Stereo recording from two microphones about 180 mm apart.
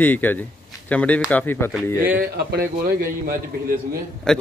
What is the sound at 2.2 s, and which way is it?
Speech, 55° right (ahead or behind).